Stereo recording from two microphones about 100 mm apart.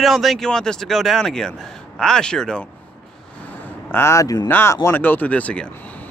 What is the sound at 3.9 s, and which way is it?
Speech, 25° left (ahead or behind).